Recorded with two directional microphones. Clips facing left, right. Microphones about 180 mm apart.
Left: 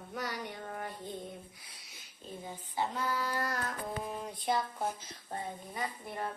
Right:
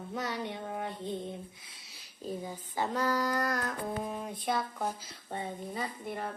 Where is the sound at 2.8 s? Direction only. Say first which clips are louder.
Right 4 dB; 40° right (ahead or behind).